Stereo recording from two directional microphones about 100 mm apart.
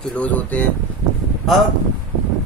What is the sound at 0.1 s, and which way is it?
Speech, 15° left (ahead or behind).